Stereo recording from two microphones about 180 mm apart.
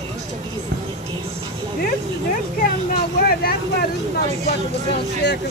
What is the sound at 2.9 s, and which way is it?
Speech, 55° left (ahead or behind).